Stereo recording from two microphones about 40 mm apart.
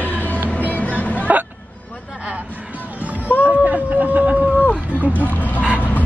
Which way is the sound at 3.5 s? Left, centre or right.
Right.